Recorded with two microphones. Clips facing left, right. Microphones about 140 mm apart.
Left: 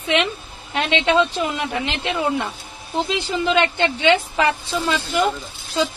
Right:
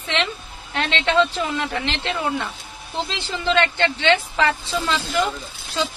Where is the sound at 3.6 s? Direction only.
15° left (ahead or behind).